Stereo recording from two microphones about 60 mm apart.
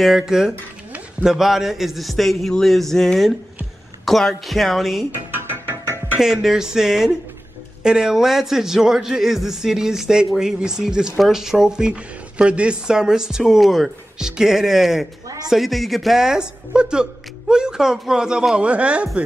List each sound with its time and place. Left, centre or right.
0.0 s speech: centre
5.3 s music: right
6.1 s a man's voice: centre
15.2 s a man's voice: right
15.5 s a man's voice: centre